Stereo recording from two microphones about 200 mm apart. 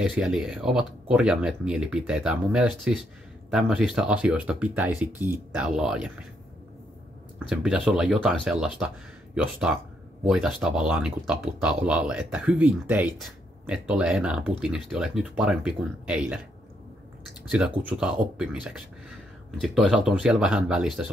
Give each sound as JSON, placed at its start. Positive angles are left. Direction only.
{"t": 0.0, "sound": "speech", "side_deg": -5}
{"t": 7.3, "sound": "speech", "side_deg": -5}
{"t": 17.5, "sound": "speech", "side_deg": -5}